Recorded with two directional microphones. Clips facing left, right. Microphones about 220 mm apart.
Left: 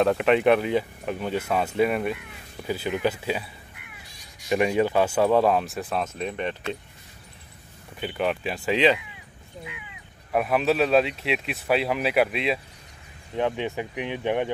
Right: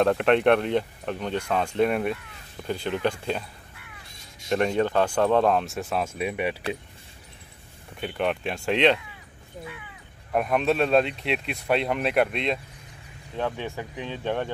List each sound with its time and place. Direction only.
0.0 s speech: centre (ahead or behind)
4.5 s speech: 5° left (ahead or behind); by 6.5 s 10° right (ahead or behind)
8.0 s speech: centre (ahead or behind)
10.3 s speech: 5° left (ahead or behind)
13.4 s speech: 20° left (ahead or behind)